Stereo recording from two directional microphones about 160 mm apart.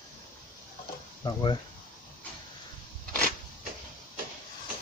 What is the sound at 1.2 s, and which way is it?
Speech, 25° left (ahead or behind).